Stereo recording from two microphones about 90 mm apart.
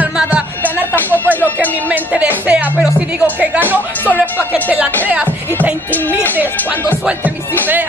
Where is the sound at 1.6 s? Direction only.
20° right (ahead or behind).